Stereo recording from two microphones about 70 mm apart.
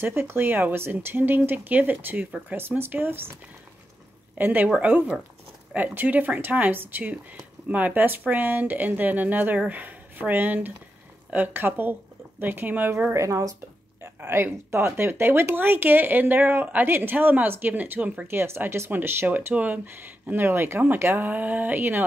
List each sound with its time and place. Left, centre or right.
0.0 s speech: right
4.4 s speech: right
13.1 s speech: right
18.2 s speech: right